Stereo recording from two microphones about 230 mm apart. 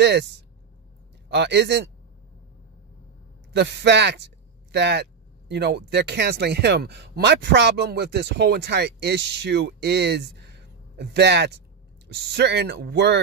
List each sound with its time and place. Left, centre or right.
0.0 s speech: right
3.5 s speech: right